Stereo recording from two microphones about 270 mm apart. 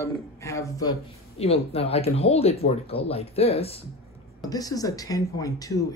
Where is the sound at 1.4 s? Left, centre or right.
Left.